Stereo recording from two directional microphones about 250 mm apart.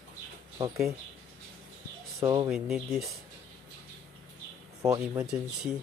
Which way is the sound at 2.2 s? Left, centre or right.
Centre.